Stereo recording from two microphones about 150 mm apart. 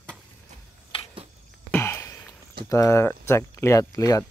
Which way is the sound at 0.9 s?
35° left (ahead or behind).